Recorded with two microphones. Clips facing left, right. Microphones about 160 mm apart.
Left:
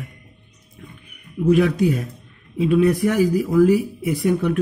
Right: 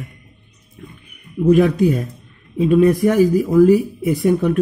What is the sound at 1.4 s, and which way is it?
Speech, 40° right (ahead or behind).